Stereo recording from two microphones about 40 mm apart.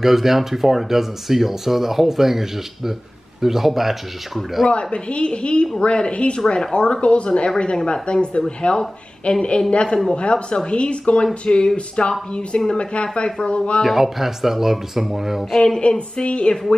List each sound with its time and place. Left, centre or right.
0.0 s speech: centre
4.6 s a woman's voice: left
6.4 s a woman's voice: centre
13.8 s speech: centre
15.8 s a woman's voice: left